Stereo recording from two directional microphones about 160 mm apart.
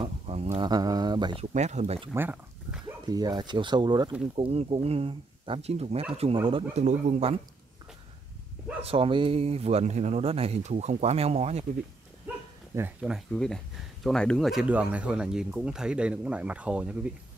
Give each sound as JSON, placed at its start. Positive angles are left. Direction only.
{"t": 0.0, "sound": "a sound", "side_deg": -40}
{"t": 0.7, "sound": "speech", "side_deg": -25}
{"t": 1.4, "sound": "speech", "side_deg": -45}
{"t": 2.1, "sound": "a sound", "side_deg": -10}
{"t": 3.1, "sound": "speech", "side_deg": -25}
{"t": 4.4, "sound": "speech", "side_deg": -40}
{"t": 6.8, "sound": "speech", "side_deg": -45}
{"t": 8.8, "sound": "speech", "side_deg": -35}
{"t": 12.7, "sound": "speech", "side_deg": -10}
{"t": 13.3, "sound": "speech", "side_deg": 5}